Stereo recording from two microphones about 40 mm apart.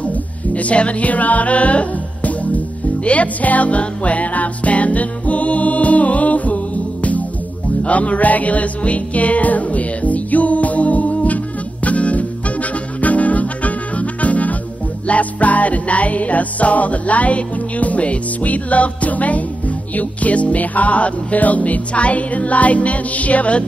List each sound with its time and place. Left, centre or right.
0.0 s music: left